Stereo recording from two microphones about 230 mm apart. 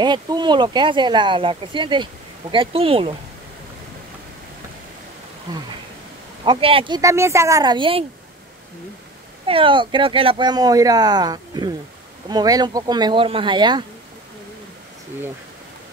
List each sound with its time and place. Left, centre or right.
0.0 s speech: centre
5.5 s speech: centre
9.5 s speech: right